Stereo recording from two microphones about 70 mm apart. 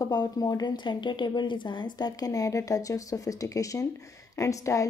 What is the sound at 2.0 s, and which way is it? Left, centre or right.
A woman's voice, left.